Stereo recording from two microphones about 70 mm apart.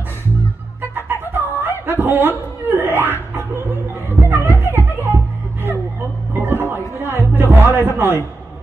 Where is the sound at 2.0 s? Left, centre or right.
Right.